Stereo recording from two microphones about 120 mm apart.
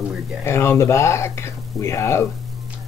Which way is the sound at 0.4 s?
20° left (ahead or behind).